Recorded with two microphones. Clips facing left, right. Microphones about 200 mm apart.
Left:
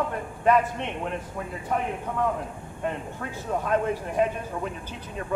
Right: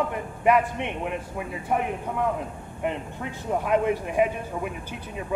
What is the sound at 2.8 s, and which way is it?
A man's voice, 15° right (ahead or behind).